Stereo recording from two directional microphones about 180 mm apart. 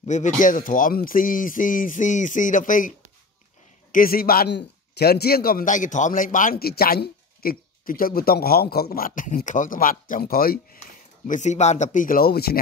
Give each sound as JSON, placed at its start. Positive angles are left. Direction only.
{"t": 0.0, "sound": "speech", "side_deg": 40}
{"t": 3.9, "sound": "a man's voice", "side_deg": 55}
{"t": 11.2, "sound": "speech", "side_deg": 40}